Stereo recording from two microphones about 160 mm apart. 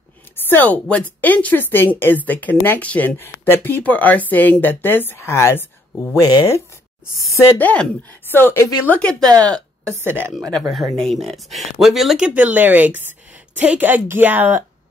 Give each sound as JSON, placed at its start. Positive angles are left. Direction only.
{"t": 0.5, "sound": "speech", "side_deg": 10}
{"t": 9.3, "sound": "speech", "side_deg": -25}
{"t": 10.0, "sound": "speech", "side_deg": -15}
{"t": 10.5, "sound": "speech", "side_deg": 0}